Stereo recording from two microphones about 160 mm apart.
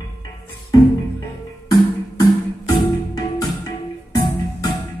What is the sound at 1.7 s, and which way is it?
Music, 25° left (ahead or behind).